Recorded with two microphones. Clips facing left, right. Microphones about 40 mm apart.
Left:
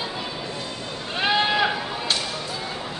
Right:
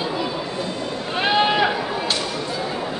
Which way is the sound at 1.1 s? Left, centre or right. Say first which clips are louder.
Right 3 dB; centre.